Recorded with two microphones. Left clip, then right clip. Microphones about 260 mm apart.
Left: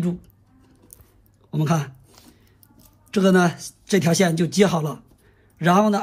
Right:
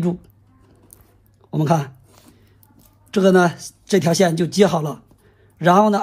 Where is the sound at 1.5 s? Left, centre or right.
Centre.